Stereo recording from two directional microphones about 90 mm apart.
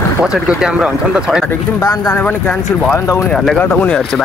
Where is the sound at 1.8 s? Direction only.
45° left (ahead or behind).